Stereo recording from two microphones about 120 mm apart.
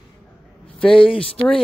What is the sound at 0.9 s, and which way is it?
Speech, 50° left (ahead or behind).